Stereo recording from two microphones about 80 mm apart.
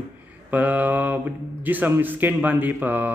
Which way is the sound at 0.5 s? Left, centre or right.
Right.